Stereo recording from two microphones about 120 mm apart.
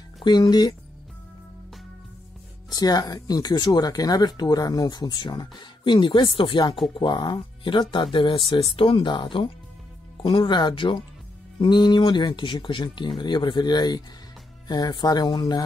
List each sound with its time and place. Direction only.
0.2 s speech: 35° left (ahead or behind)
2.7 s speech: 30° left (ahead or behind)